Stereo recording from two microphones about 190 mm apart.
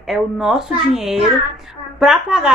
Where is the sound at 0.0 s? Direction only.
Centre (ahead or behind).